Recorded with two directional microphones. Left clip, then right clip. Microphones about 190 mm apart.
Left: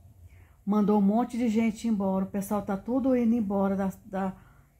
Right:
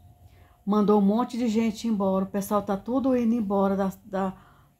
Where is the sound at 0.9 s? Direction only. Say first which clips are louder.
Right 3 dB; 5° right (ahead or behind).